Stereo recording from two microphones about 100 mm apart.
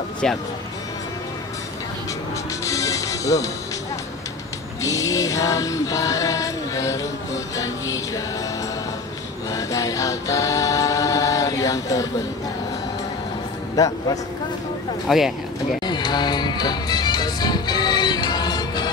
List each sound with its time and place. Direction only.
0.2 s speech: 5° left (ahead or behind)
2.6 s music: 35° left (ahead or behind)
4.8 s music: 35° left (ahead or behind)
9.5 s choir: 35° left (ahead or behind)
13.7 s music: 35° left (ahead or behind)
15.0 s speech: 5° right (ahead or behind)
15.8 s music: 45° left (ahead or behind)